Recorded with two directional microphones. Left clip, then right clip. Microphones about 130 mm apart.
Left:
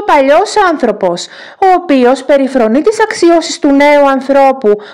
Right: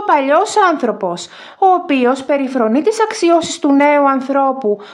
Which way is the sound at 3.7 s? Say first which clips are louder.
Left 5 dB; 35° left (ahead or behind).